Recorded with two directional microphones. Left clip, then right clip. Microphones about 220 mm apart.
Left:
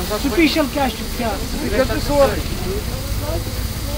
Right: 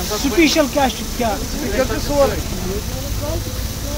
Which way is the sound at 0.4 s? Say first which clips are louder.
Right 3 dB; 45° right (ahead or behind).